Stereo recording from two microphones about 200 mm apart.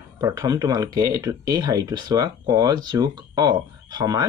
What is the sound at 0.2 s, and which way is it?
Speech, 20° right (ahead or behind).